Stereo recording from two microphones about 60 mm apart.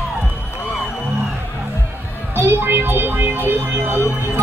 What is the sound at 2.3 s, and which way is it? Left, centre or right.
Music, right.